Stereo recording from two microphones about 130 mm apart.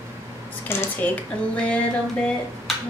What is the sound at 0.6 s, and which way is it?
Speech, 15° left (ahead or behind).